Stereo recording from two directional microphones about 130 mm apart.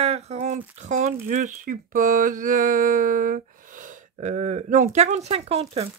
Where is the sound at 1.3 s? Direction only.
85° right.